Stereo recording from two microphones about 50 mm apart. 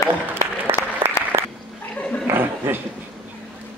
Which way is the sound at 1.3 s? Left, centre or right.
Right.